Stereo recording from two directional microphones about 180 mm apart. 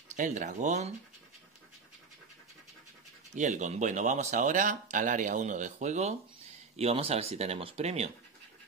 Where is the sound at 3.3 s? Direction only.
40° right (ahead or behind).